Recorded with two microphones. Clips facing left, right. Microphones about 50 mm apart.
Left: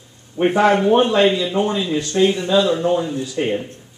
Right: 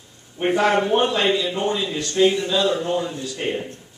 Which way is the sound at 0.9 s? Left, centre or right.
Centre.